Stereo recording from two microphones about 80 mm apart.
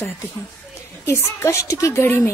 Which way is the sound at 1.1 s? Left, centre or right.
Left.